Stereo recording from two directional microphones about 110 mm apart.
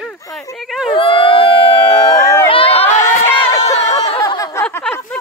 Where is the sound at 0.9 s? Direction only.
50° left (ahead or behind).